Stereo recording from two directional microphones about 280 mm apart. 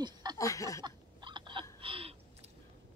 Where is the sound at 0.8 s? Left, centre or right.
Centre.